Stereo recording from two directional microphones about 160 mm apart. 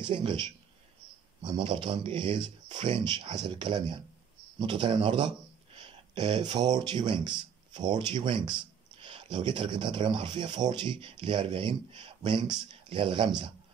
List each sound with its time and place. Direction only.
0.0 s speech: 30° right (ahead or behind)
5.8 s a sound: 30° right (ahead or behind)
6.8 s speech: 30° right (ahead or behind)